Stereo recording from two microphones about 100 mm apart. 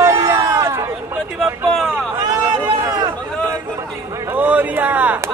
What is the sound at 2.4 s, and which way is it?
Run, 20° right (ahead or behind).